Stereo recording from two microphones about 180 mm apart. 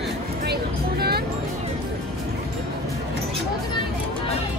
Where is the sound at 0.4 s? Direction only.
60° right (ahead or behind).